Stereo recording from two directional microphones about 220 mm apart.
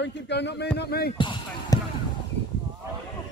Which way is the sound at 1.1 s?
20° left (ahead or behind).